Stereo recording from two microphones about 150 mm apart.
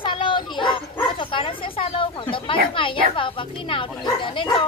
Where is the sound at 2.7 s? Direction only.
35° left (ahead or behind).